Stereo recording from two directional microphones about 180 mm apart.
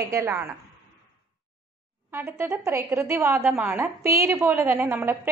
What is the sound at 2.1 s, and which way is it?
A woman's voice, 10° right (ahead or behind).